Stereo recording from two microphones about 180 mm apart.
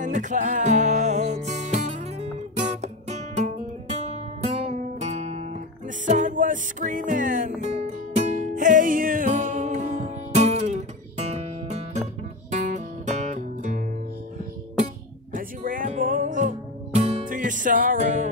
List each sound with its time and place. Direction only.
0.0 s music: 45° right (ahead or behind)
15.3 s music: 50° right (ahead or behind)